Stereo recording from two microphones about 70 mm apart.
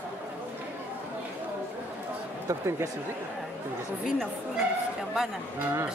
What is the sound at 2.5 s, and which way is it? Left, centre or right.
Speech, right.